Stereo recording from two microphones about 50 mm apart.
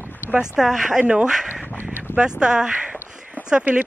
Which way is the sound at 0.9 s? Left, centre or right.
Centre.